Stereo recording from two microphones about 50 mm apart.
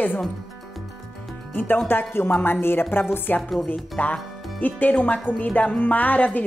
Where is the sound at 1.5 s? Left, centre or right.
Left.